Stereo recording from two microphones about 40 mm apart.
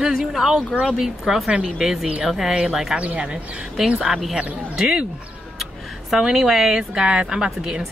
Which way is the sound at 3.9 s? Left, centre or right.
Centre.